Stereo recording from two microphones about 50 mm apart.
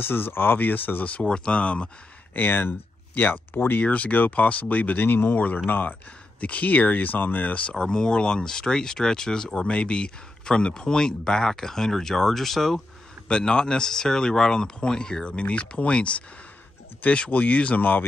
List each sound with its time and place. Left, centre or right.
0.0 s speech: left
1.2 s speech: centre
2.3 s speech: left
3.8 s speech: left
7.7 s speech: centre
13.3 s speech: centre
17.3 s speech: left